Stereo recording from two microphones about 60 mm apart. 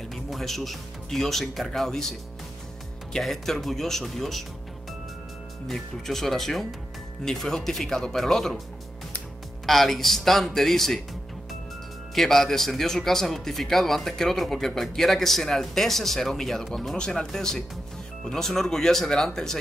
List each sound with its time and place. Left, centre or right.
0.3 s speech: centre
5.7 s speech: centre
9.7 s speech: centre
12.2 s speech: centre